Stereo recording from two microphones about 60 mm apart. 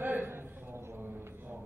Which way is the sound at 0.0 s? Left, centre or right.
Right.